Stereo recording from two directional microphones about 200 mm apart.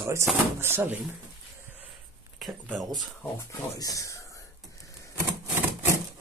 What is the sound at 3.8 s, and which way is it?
Speech, 15° left (ahead or behind).